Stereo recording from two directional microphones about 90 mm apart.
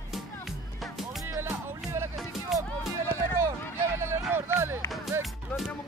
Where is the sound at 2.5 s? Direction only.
Centre (ahead or behind).